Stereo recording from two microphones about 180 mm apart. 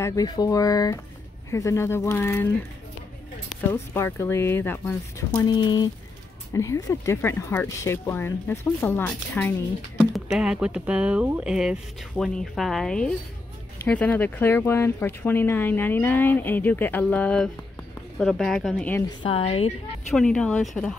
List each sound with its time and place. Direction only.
0.0 s speech: 20° left (ahead or behind)
3.7 s speech: 15° left (ahead or behind)
10.3 s speech: 5° right (ahead or behind)
19.2 s a woman's voice: 30° left (ahead or behind)
20.1 s speech: 5° left (ahead or behind)